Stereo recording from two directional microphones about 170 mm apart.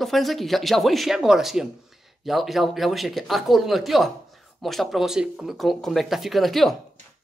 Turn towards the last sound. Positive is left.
turn(degrees=0)  # may be behind; listen again after turning